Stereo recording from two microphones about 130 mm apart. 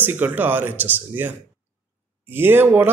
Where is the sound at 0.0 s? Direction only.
15° right (ahead or behind).